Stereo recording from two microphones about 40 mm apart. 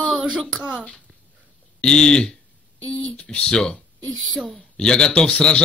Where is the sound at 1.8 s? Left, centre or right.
Centre.